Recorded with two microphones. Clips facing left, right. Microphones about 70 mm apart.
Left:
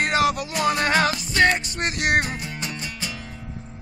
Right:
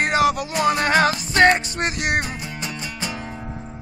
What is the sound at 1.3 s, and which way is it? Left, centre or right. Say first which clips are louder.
Music: right 4 dB; right.